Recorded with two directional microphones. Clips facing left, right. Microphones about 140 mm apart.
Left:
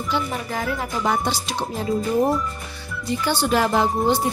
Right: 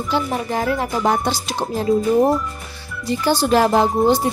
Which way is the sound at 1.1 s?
50° right (ahead or behind).